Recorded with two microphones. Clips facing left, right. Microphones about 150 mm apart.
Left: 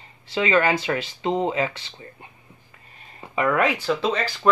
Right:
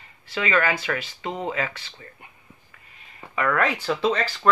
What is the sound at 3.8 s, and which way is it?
Speech, 5° left (ahead or behind).